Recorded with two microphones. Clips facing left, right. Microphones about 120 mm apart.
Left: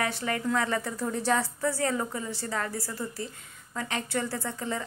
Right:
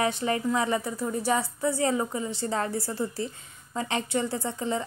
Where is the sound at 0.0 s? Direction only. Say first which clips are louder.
Right 3 dB; 20° right (ahead or behind).